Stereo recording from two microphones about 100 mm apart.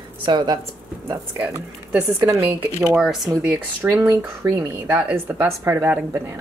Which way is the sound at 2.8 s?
5° right (ahead or behind).